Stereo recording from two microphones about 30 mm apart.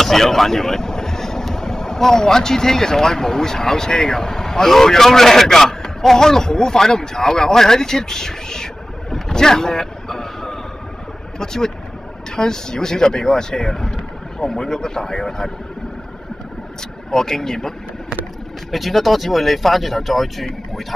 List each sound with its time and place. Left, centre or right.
0.0 s speech: centre
9.1 s vehicle: centre
11.3 s speech: centre
17.1 s speech: centre
18.7 s speech: centre